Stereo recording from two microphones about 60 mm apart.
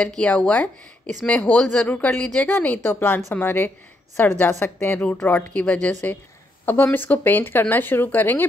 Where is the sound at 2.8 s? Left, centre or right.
Left.